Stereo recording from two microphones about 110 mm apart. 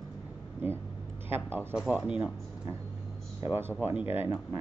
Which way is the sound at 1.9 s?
10° right (ahead or behind).